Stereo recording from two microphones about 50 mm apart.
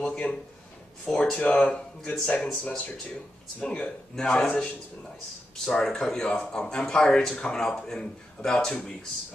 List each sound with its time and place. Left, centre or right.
0.0 s a sound: left
1.0 s speech: centre
1.4 s speech: left
4.1 s speech: centre
4.5 s speech: left